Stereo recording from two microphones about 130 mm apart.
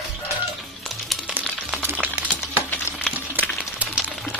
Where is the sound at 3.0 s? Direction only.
10° right (ahead or behind).